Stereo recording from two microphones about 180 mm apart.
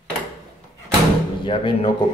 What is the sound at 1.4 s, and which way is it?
Speech, 30° left (ahead or behind).